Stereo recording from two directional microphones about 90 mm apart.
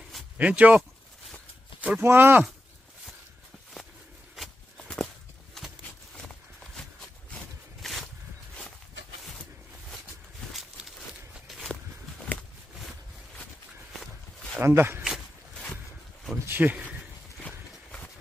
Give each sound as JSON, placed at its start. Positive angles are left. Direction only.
{"t": 0.4, "sound": "speech", "side_deg": -15}
{"t": 2.0, "sound": "speech", "side_deg": -25}
{"t": 4.7, "sound": "walk", "side_deg": 10}
{"t": 6.1, "sound": "a sound", "side_deg": 5}
{"t": 11.3, "sound": "walk", "side_deg": 0}
{"t": 11.7, "sound": "walk", "side_deg": 15}
{"t": 13.9, "sound": "walk", "side_deg": 5}
{"t": 14.6, "sound": "speech", "side_deg": -25}
{"t": 16.4, "sound": "speech", "side_deg": -20}
{"t": 17.4, "sound": "clip-clop", "side_deg": 20}